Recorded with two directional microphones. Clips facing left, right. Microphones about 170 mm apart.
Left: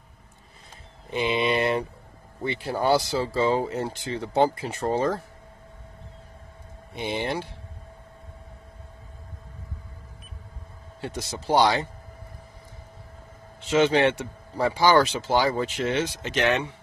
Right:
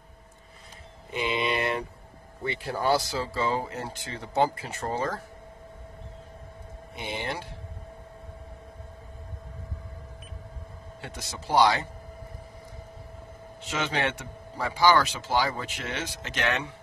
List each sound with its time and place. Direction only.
1.1 s a sound: 30° left (ahead or behind)
2.4 s speech: 25° left (ahead or behind)
7.0 s speech: 25° left (ahead or behind)
11.0 s speech: 30° left (ahead or behind)
13.7 s speech: 25° left (ahead or behind)